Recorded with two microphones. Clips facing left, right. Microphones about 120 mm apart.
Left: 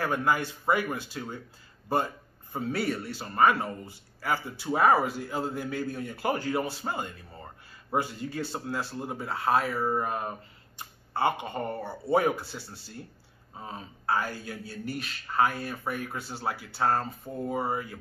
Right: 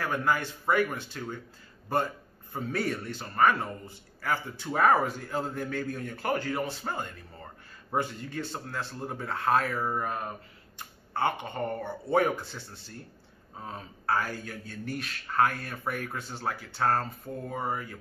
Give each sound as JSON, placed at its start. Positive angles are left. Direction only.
{"t": 0.0, "sound": "a man's voice", "side_deg": 15}
{"t": 2.5, "sound": "a man's voice", "side_deg": 5}
{"t": 9.9, "sound": "a sound", "side_deg": 20}
{"t": 11.1, "sound": "a man's voice", "side_deg": 10}